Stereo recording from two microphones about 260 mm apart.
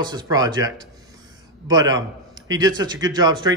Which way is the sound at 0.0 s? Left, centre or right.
Centre.